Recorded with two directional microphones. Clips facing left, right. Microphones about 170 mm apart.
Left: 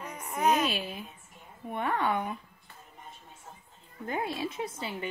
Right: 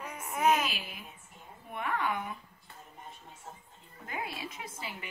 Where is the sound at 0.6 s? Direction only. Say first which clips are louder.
Left 7 dB; 30° left (ahead or behind).